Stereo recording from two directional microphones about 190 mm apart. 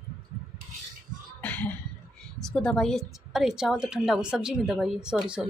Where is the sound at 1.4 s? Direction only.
10° left (ahead or behind).